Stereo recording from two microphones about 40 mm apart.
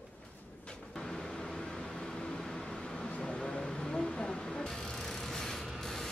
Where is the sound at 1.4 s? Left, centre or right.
Centre.